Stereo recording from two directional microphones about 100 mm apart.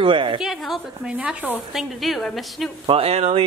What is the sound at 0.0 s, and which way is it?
Speech, 60° right (ahead or behind).